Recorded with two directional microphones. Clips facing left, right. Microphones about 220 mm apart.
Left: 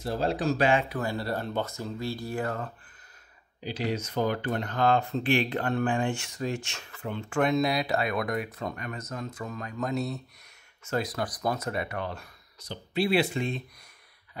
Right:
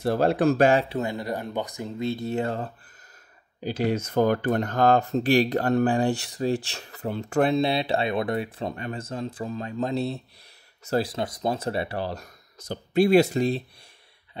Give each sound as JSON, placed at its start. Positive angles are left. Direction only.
{"t": 0.0, "sound": "speech", "side_deg": -60}
{"t": 0.8, "sound": "speech", "side_deg": -20}
{"t": 3.6, "sound": "speech", "side_deg": -50}